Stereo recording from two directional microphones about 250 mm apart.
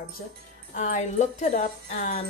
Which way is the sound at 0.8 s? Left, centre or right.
Left.